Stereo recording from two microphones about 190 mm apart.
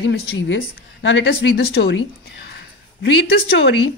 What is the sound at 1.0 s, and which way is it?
Speech, 65° left (ahead or behind).